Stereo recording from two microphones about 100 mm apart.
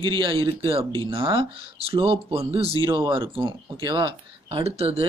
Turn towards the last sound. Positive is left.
turn(degrees=-80)